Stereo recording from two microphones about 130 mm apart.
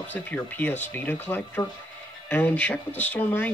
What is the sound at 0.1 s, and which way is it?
Speech, 15° left (ahead or behind).